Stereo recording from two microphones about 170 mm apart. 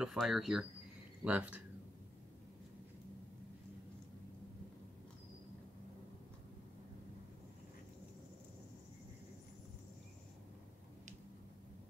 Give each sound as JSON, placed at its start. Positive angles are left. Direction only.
{"t": 0.0, "sound": "speech", "side_deg": 0}